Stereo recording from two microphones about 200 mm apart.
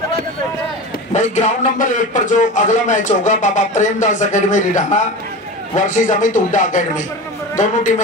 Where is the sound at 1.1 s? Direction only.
35° left (ahead or behind).